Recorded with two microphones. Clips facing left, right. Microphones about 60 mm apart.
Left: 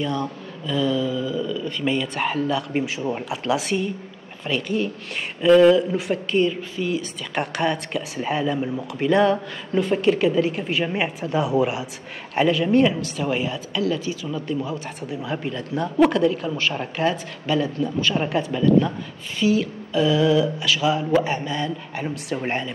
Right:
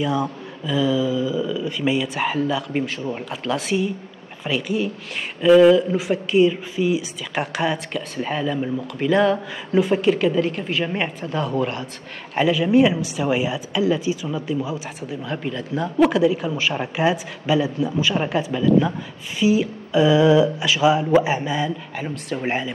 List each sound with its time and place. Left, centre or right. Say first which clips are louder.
0.0 s a woman's voice: right 3 dB; centre
19.4 s speech: right 2 dB; centre
21.9 s a woman's voice: even; centre